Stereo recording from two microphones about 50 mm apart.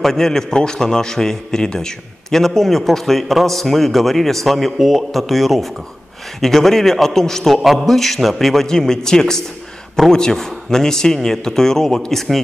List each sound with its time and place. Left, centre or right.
0.0 s a man's voice: centre